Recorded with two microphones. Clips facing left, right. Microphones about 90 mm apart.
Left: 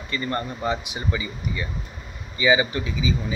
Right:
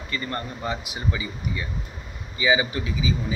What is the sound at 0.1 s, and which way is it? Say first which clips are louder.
Speech: left 3 dB; 5° left (ahead or behind).